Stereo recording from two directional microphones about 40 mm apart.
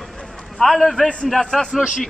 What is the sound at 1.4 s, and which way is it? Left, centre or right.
Speech, centre.